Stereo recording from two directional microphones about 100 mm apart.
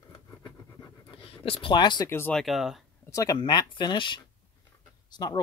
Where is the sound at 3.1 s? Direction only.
35° left (ahead or behind).